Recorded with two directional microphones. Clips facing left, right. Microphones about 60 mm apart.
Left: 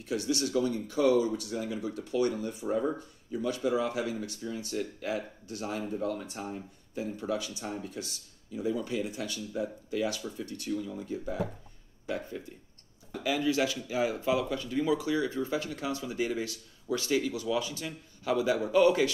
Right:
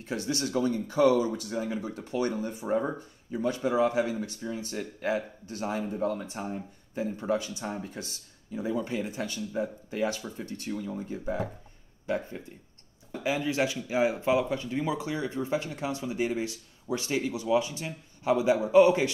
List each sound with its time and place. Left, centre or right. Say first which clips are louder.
0.0 s speech: left 1 dB; right
13.2 s speech: even; right